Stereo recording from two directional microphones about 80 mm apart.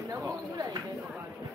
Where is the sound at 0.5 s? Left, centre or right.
Right.